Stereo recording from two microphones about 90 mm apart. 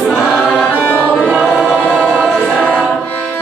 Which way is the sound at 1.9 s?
10° left (ahead or behind).